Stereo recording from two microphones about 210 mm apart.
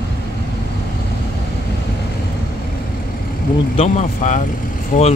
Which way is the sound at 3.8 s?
35° left (ahead or behind).